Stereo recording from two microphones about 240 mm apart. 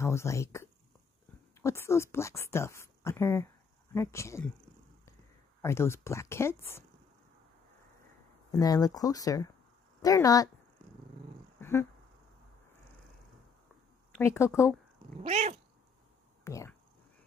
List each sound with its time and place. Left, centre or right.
0.0 s a woman's voice: centre
5.6 s a woman's voice: centre
8.5 s a woman's voice: centre
11.6 s a sound: centre
14.2 s a woman's voice: centre
15.2 s cat: right
16.4 s speech: centre